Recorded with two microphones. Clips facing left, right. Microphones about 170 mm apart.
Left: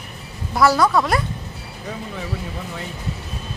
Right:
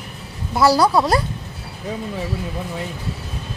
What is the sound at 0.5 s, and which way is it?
Speech, 30° right (ahead or behind).